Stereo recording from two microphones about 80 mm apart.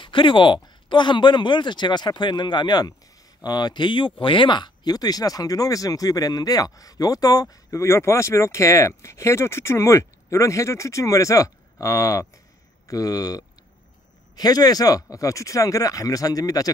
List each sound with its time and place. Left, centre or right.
0.0 s speech: left